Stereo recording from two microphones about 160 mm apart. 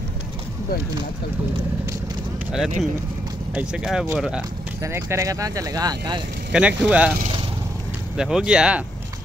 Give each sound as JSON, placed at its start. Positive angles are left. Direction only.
{"t": 2.5, "sound": "speech", "side_deg": -5}
{"t": 4.8, "sound": "speech", "side_deg": -20}
{"t": 6.5, "sound": "speech", "side_deg": -5}
{"t": 8.2, "sound": "speech", "side_deg": -5}